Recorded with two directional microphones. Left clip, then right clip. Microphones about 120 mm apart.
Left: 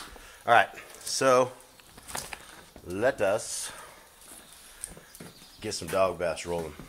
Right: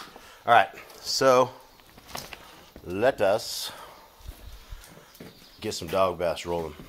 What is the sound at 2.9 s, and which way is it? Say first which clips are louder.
Speech: right 3 dB; 35° right (ahead or behind).